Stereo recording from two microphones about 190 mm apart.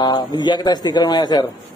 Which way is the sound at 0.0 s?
25° left (ahead or behind).